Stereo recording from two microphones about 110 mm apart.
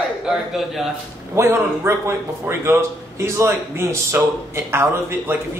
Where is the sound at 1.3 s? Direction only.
25° right (ahead or behind).